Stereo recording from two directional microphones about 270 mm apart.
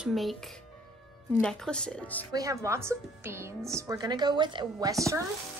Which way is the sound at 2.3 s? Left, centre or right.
Centre.